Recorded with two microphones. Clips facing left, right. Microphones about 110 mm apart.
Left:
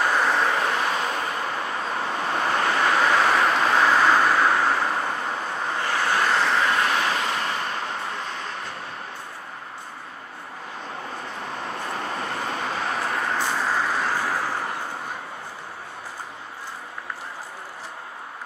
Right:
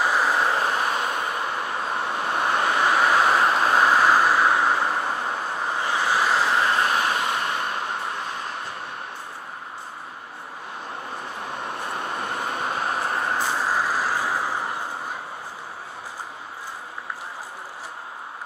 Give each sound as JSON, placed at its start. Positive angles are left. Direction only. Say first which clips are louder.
{"t": 0.0, "sound": "vehicle", "louder": "even", "side_deg": -5}
{"t": 3.3, "sound": "vehicle", "louder": "right 1 dB", "side_deg": -30}
{"t": 3.7, "sound": "vehicle", "louder": "even", "side_deg": -10}
{"t": 6.6, "sound": "vehicle", "louder": "even", "side_deg": -30}
{"t": 7.1, "sound": "vehicle", "louder": "right 1 dB", "side_deg": -5}
{"t": 11.9, "sound": "vehicle", "louder": "even", "side_deg": -5}
{"t": 12.6, "sound": "vehicle", "louder": "right 2 dB", "side_deg": -45}
{"t": 13.1, "sound": "vehicle", "louder": "right 1 dB", "side_deg": -30}
{"t": 13.4, "sound": "vehicle", "louder": "even", "side_deg": -5}